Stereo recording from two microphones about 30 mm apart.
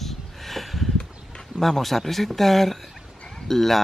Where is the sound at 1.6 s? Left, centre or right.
Centre.